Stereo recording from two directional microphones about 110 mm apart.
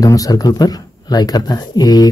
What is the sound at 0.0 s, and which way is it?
Speech, 30° left (ahead or behind).